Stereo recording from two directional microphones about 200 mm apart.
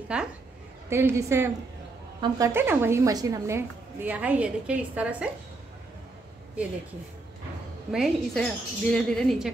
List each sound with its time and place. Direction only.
0.1 s a woman's voice: 5° right (ahead or behind)
7.9 s speech: centre (ahead or behind)